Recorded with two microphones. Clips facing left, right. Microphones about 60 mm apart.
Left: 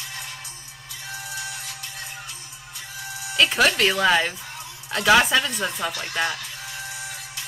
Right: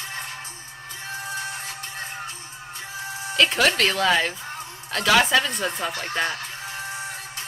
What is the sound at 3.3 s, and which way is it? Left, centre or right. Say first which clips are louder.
Speech: left 1 dB; centre.